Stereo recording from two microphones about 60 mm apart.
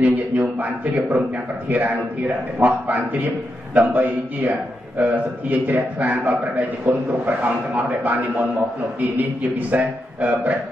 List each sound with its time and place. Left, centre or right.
0.0 s a man's voice: right